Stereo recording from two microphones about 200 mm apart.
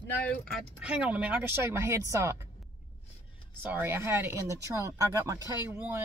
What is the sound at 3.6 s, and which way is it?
Speech, 10° right (ahead or behind).